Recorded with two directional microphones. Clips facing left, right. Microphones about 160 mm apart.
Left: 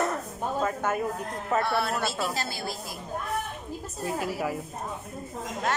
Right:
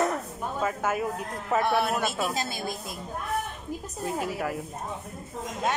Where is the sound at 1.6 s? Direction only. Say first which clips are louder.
Right 2 dB; 15° right (ahead or behind).